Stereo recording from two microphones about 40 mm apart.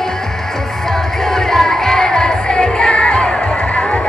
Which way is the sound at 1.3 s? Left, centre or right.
Centre.